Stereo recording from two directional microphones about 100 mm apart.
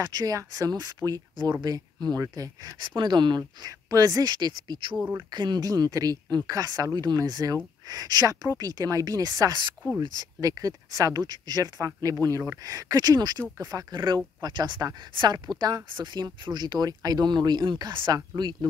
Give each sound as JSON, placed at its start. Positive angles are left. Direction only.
{"t": 0.0, "sound": "speech", "side_deg": -35}
{"t": 3.0, "sound": "speech", "side_deg": -50}
{"t": 10.0, "sound": "speech", "side_deg": -40}